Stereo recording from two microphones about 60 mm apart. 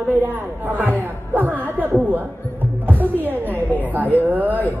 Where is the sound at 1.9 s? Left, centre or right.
Right.